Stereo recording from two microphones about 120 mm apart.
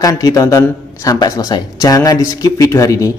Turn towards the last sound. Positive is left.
turn(degrees=25)  # may be behind; listen again after turning